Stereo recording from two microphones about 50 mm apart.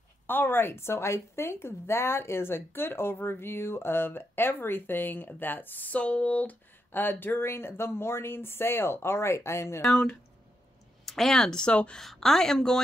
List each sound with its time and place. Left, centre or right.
0.3 s a woman's voice: left
6.9 s speech: left
11.1 s speech: centre
12.0 s speech: centre